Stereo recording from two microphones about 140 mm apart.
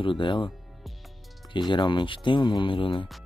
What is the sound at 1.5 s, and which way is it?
Speech, 35° left (ahead or behind).